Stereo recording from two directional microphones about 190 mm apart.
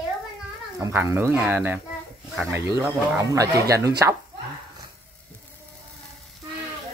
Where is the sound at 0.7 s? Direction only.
15° right (ahead or behind).